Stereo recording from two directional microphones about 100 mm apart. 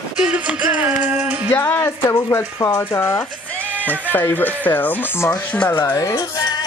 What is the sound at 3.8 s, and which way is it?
Speech, 20° left (ahead or behind).